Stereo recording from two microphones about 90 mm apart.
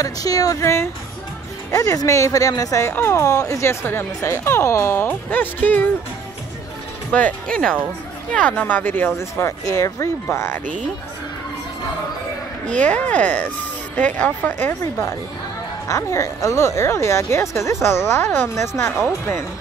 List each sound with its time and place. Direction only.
0.0 s speech: 40° left (ahead or behind)
2.9 s speech: 25° left (ahead or behind)
7.1 s speech: 15° left (ahead or behind)
9.7 s speech: 35° left (ahead or behind)
12.6 s speech: 15° left (ahead or behind)